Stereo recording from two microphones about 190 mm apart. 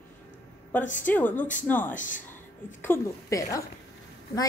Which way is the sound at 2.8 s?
15° left (ahead or behind).